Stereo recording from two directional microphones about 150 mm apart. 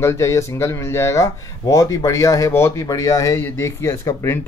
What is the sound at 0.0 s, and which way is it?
Speech, 20° left (ahead or behind).